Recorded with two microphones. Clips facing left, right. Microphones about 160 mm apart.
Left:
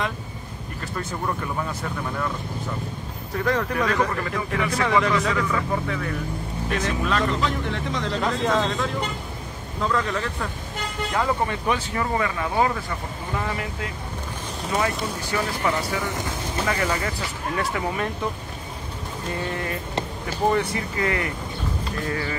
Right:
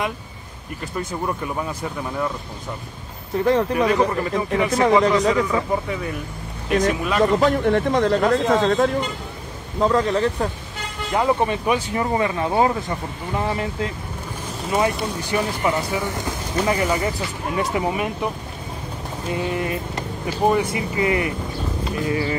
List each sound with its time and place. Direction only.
3.3 s speech: 25° right (ahead or behind)
3.7 s a man's voice: 15° right (ahead or behind); by 5.3 s 35° right (ahead or behind)
5.3 s speech: 20° right (ahead or behind)
7.3 s speech: 50° right (ahead or behind)
9.8 s a man's voice: 35° right (ahead or behind)
11.1 s speech: 20° right (ahead or behind)
17.6 s speech: 15° right (ahead or behind)
19.3 s speech: 15° right (ahead or behind)